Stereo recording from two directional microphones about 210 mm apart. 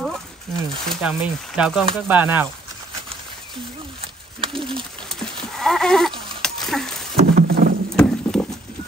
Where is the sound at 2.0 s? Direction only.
10° right (ahead or behind).